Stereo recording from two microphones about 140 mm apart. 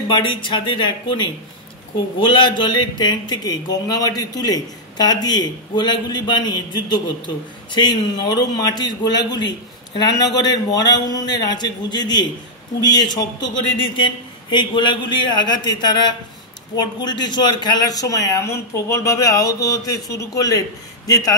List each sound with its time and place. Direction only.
0.1 s a man's voice: 35° left (ahead or behind)